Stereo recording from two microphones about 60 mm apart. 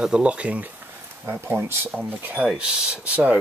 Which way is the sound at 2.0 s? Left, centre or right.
Right.